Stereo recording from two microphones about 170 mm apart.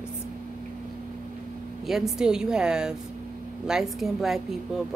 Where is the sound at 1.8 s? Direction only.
Centre (ahead or behind).